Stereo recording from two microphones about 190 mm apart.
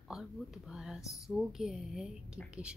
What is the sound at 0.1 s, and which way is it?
A woman's voice, centre (ahead or behind).